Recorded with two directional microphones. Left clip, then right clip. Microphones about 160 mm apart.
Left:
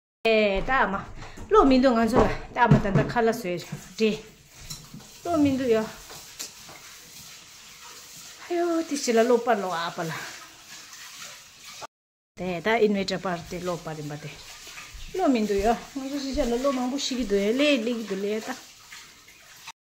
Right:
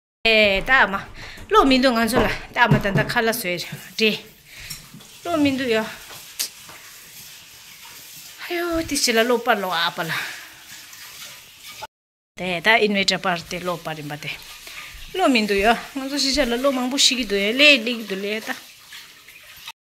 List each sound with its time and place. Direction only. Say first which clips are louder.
0.2 s speech: right 6 dB; centre (ahead or behind)
5.2 s a sound: right 3 dB; 5° right (ahead or behind)
8.4 s speech: right 2 dB; 10° right (ahead or behind)
12.4 s speech: right 6 dB; 5° left (ahead or behind); by 16.4 s 15° right (ahead or behind)
16.9 s speech: right 12 dB; 5° right (ahead or behind)
17.2 s speech: right 2 dB; 10° left (ahead or behind)